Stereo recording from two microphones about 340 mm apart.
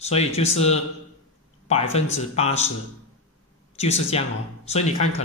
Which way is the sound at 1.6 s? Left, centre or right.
Centre.